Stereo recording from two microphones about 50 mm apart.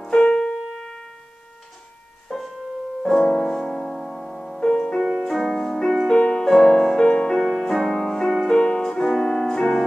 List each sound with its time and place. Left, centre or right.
0.0 s keyboard: centre
2.2 s music: centre
4.6 s music: centre
5.0 s music: centre
6.5 s music: centre